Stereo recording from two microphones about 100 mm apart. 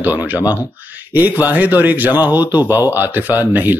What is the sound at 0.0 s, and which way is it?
Speech, 20° right (ahead or behind).